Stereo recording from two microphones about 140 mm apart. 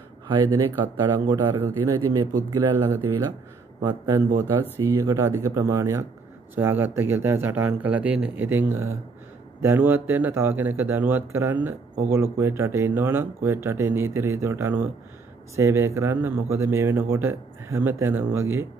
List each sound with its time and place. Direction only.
1.0 s a man's voice: 30° right (ahead or behind)
1.5 s speech: 20° right (ahead or behind)
3.8 s speech: 30° right (ahead or behind)